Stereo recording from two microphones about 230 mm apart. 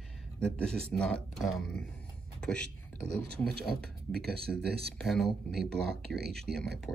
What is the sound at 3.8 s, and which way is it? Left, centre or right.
Speech, centre.